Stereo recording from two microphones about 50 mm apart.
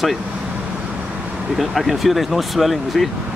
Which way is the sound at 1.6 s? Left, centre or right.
Centre.